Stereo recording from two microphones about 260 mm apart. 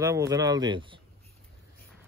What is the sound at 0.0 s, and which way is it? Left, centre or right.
A man's voice, centre.